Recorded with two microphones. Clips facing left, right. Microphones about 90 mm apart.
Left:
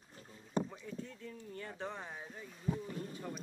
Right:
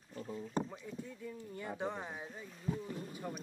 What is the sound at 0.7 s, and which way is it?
Speech, 10° right (ahead or behind).